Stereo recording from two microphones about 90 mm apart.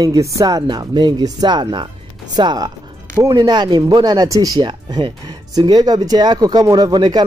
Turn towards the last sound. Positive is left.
turn(degrees=-50)  # may be behind; listen again after turning